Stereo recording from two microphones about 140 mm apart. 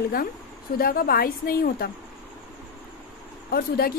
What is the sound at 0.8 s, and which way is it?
A woman's voice, 90° left.